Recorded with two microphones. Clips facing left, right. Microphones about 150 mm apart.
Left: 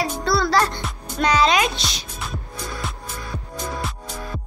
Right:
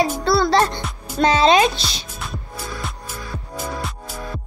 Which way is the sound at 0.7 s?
Centre (ahead or behind).